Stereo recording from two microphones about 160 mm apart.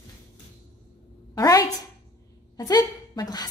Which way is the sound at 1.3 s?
20° left (ahead or behind).